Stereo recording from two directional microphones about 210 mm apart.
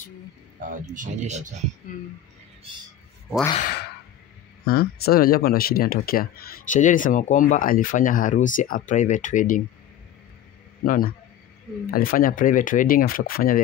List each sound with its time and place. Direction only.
0.6 s speech: 40° right (ahead or behind)
3.5 s speech: 45° left (ahead or behind)
10.8 s speech: 45° left (ahead or behind)